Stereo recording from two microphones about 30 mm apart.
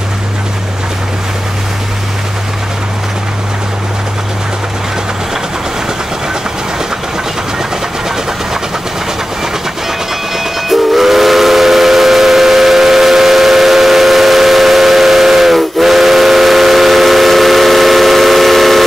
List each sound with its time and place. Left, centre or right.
10.3 s train: centre